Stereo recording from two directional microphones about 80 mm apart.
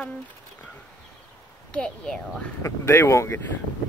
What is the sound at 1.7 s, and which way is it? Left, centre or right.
Speech, centre.